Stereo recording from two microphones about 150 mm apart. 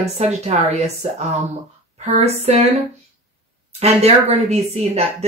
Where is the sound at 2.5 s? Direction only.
45° right (ahead or behind).